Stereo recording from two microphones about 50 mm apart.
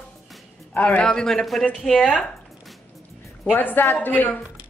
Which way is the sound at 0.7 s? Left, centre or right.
Left.